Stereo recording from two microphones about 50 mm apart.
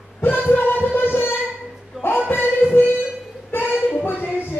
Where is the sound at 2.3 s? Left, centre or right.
Left.